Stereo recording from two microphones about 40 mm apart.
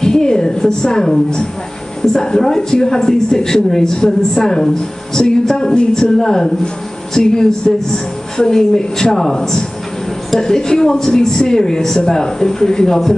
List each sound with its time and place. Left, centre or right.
0.0 s a woman's voice: centre